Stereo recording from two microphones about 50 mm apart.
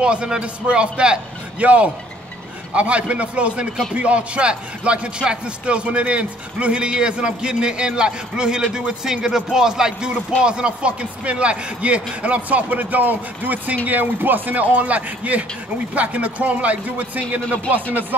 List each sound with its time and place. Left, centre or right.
0.0 s speech: centre